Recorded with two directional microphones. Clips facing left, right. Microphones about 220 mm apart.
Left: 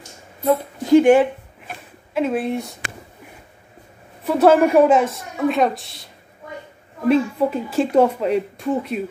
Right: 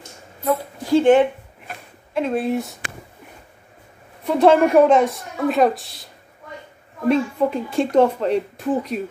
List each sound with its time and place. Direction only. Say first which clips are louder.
0.4 s a woman's voice: left 3 dB; 25° left (ahead or behind)
1.2 s a sound: right 1 dB; centre (ahead or behind)
4.2 s speech: left 1 dB; 5° left (ahead or behind)
7.1 s speech: left 1 dB; 5° left (ahead or behind)